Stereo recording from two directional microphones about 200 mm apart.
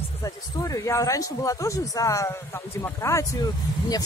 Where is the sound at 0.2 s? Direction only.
15° left (ahead or behind).